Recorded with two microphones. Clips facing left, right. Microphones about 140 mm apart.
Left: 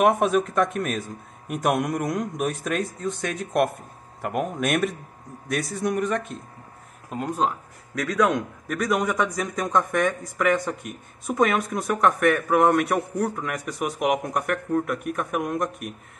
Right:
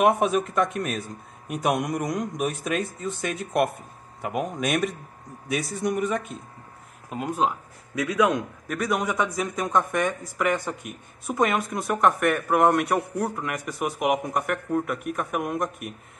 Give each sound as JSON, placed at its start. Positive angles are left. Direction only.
{"t": 0.0, "sound": "a man's voice", "side_deg": 0}